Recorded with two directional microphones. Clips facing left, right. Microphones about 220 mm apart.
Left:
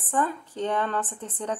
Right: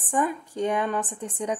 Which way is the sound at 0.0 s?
15° right (ahead or behind).